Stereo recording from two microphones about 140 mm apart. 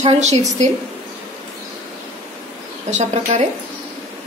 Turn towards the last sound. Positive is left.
turn(degrees=-55)  # may be behind; listen again after turning